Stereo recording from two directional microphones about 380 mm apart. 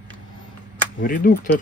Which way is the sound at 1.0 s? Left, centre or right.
Left.